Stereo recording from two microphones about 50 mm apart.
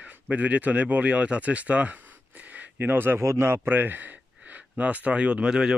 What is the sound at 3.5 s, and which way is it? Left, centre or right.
Speech, right.